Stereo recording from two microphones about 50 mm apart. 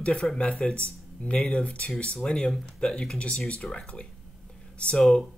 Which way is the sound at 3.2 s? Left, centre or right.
Left.